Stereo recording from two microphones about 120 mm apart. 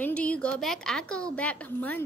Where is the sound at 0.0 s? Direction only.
10° left (ahead or behind).